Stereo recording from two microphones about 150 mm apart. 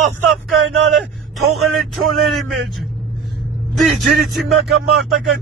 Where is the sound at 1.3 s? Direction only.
Centre (ahead or behind).